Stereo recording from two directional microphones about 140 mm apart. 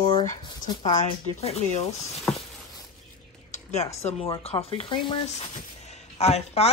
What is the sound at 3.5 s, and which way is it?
Speech, 50° left (ahead or behind).